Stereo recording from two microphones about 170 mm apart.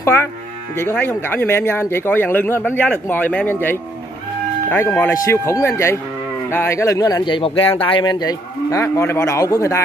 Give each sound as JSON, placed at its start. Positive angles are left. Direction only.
{"t": 0.0, "sound": "speech", "side_deg": 15}
{"t": 4.6, "sound": "speech", "side_deg": 15}